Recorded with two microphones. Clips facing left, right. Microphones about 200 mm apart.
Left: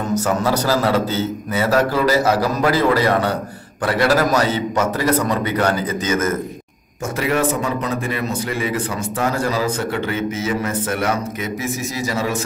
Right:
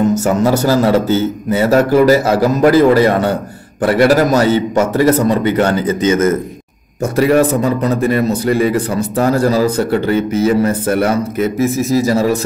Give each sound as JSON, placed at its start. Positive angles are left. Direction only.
{"t": 0.1, "sound": "a man's voice", "side_deg": -25}
{"t": 7.2, "sound": "a man's voice", "side_deg": -35}